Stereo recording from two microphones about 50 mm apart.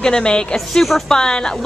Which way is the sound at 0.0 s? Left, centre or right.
Centre.